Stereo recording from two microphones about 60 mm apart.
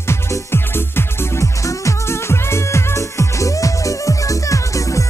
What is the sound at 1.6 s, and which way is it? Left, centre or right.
Music, left.